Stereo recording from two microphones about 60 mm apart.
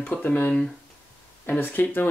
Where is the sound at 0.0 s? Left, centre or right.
Left.